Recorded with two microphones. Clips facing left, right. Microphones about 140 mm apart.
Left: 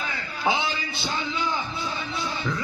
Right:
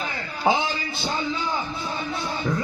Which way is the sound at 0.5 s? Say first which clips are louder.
Right 3 dB; 45° right (ahead or behind).